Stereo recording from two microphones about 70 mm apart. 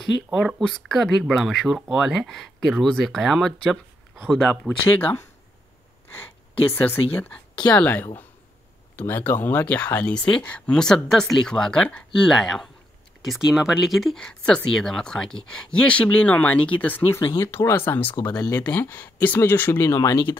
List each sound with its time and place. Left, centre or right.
0.3 s speech: centre
4.6 s speech: left
6.8 s speech: left; by 14.2 s centre
14.2 s speech: centre; by 18.1 s left
18.4 s speech: left
18.7 s speech: left
19.8 s speech: left